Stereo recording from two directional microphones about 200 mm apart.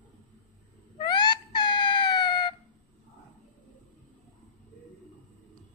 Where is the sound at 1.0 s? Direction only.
20° left (ahead or behind).